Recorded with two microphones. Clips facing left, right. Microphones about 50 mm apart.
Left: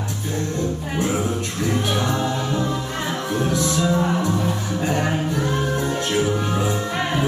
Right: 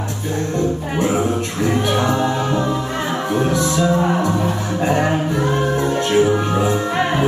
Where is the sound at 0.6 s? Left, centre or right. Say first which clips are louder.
Right 7 dB; centre.